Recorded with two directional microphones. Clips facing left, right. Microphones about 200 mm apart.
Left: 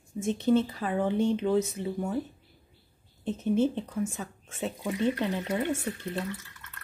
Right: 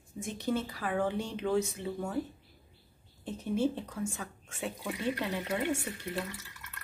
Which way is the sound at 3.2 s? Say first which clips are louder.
Left 5 dB; 20° left (ahead or behind).